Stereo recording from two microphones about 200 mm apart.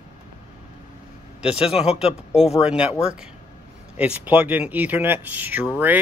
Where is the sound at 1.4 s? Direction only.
5° right (ahead or behind).